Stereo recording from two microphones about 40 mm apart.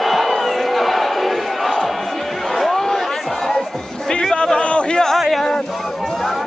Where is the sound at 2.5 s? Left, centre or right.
Centre.